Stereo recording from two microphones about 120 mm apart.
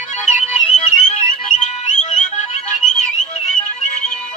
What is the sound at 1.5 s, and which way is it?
Whistle, 90° left.